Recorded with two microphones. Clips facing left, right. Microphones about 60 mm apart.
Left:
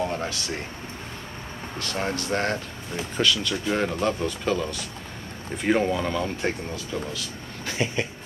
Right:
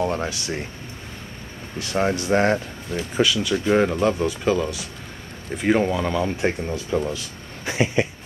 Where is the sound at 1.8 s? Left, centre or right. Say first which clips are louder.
Right 6 dB; centre.